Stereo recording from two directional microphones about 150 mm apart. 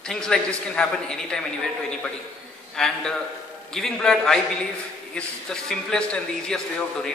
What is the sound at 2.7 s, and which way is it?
A man's voice, 5° left (ahead or behind).